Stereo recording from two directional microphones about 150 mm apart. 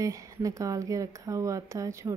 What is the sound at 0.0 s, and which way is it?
Speech, 20° right (ahead or behind).